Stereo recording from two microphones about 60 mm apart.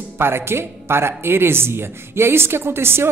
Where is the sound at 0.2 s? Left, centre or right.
Right.